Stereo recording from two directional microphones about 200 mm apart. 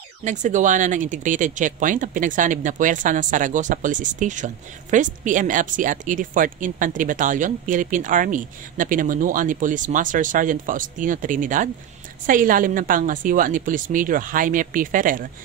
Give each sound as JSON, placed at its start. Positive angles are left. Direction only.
{"t": 0.2, "sound": "a woman's voice", "side_deg": -40}